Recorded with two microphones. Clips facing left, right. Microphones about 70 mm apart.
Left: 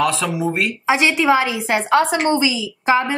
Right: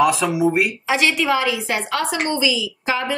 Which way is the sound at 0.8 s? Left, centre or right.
Left.